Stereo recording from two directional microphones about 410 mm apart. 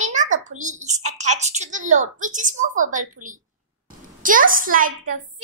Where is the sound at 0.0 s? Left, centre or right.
Centre.